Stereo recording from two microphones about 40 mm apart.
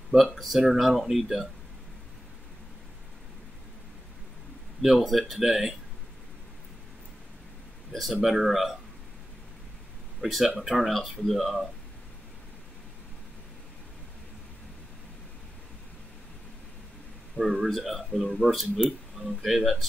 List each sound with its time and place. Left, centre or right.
0.3 s speech: centre
4.8 s speech: centre
7.9 s speech: centre
10.2 s speech: centre
17.4 s speech: centre